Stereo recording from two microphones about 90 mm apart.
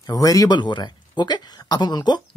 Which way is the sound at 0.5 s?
60° left (ahead or behind).